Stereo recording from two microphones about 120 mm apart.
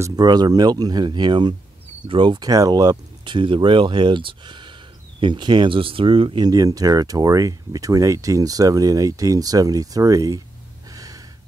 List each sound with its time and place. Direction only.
0.0 s speech: 35° right (ahead or behind)
10.9 s gasp: 30° right (ahead or behind)